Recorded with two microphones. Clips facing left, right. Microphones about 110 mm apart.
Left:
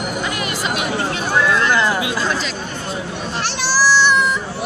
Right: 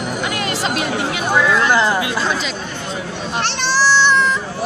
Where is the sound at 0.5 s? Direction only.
35° right (ahead or behind).